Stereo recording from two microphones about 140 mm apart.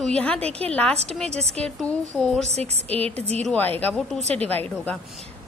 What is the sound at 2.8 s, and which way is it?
Speech, 10° left (ahead or behind).